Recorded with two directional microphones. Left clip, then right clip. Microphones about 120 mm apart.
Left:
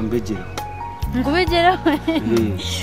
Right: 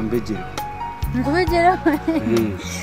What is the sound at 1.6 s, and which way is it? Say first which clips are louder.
Speech: even; 20° left (ahead or behind).